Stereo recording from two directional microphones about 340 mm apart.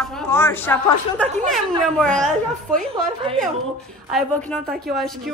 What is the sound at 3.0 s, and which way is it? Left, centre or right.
Speech, centre.